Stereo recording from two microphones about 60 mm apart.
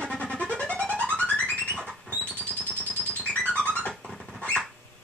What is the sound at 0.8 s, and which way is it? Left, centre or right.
Music, right.